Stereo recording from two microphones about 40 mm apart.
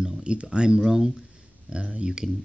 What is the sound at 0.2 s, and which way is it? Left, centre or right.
Speech, right.